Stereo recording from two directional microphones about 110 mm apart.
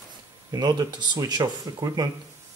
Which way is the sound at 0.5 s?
35° right (ahead or behind).